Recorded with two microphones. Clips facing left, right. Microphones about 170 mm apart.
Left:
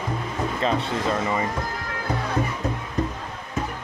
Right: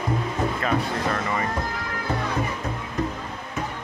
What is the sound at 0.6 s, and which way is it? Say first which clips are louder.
Speech: left 1 dB; 20° left (ahead or behind).